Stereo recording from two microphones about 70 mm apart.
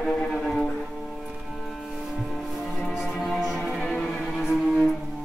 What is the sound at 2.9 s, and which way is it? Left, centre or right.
Music, centre.